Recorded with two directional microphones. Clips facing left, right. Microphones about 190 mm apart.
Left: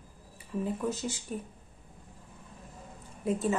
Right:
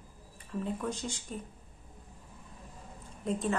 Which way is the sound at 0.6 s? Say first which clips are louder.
Left 3 dB; 5° left (ahead or behind).